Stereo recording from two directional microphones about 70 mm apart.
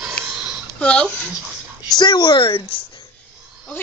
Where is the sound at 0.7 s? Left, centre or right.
Centre.